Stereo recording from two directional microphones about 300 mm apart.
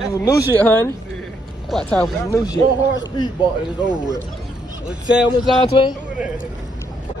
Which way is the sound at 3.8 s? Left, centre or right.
Centre.